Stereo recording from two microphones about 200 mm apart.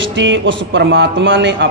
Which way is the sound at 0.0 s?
65° right (ahead or behind).